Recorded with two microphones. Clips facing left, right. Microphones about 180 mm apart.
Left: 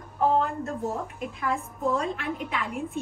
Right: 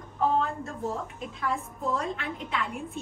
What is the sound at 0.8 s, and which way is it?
Speech, centre (ahead or behind).